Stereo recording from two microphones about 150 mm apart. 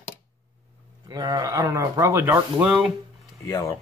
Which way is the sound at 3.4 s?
20° left (ahead or behind).